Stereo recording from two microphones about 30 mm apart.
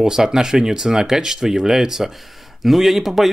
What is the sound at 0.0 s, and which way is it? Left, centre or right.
Speech, centre.